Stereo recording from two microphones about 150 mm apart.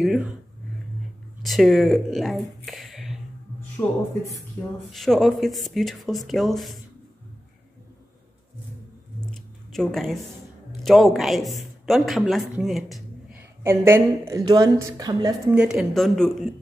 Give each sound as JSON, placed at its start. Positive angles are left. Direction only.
{"t": 0.0, "sound": "speech", "side_deg": 0}
{"t": 1.4, "sound": "speech", "side_deg": 0}
{"t": 3.8, "sound": "speech", "side_deg": 15}
{"t": 4.9, "sound": "speech", "side_deg": 0}
{"t": 9.2, "sound": "a sound", "side_deg": 0}
{"t": 10.8, "sound": "speech", "side_deg": 0}
{"t": 13.4, "sound": "a woman's voice", "side_deg": -15}
{"t": 15.5, "sound": "speech", "side_deg": -5}